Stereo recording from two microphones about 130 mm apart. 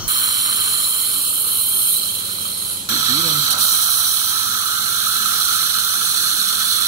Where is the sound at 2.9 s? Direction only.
25° right (ahead or behind).